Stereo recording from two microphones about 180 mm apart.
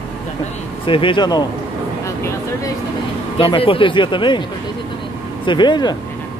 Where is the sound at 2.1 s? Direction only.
15° left (ahead or behind).